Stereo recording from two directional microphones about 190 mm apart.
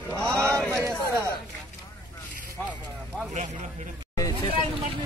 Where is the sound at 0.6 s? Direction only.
5° left (ahead or behind).